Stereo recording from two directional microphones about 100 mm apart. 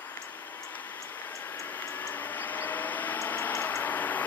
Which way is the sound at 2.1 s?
15° left (ahead or behind).